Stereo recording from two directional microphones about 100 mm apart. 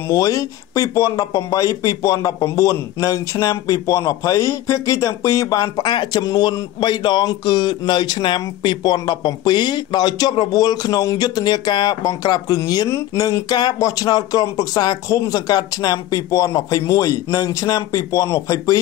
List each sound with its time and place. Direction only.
0.1 s speech: 35° left (ahead or behind)